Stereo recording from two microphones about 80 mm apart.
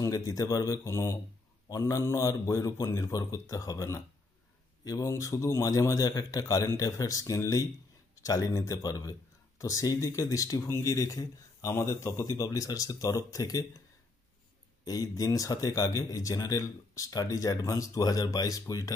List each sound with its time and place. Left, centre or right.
0.0 s speech: left
14.9 s speech: left